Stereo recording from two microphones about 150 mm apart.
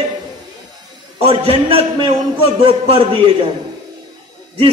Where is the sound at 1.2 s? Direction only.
40° right (ahead or behind).